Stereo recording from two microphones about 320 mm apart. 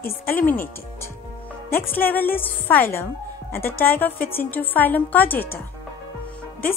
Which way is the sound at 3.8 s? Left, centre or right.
Centre.